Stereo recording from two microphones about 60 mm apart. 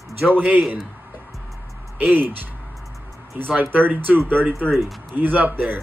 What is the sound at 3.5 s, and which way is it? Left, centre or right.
Speech, right.